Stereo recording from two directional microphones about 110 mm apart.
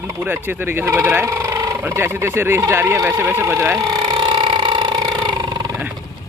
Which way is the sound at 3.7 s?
35° right (ahead or behind).